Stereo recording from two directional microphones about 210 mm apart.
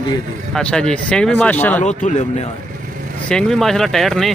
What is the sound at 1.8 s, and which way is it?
Speech, 35° left (ahead or behind).